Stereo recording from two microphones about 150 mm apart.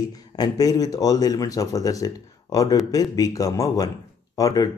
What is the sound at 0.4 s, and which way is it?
Speech, 25° left (ahead or behind).